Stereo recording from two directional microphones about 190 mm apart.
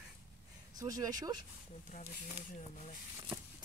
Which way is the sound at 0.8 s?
20° right (ahead or behind).